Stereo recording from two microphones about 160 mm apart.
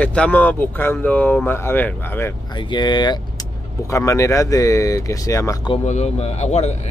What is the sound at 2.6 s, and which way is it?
Speech, 30° left (ahead or behind).